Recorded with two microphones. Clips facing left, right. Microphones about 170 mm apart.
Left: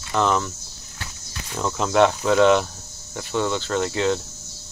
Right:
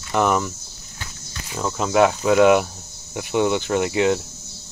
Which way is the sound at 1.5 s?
5° right (ahead or behind).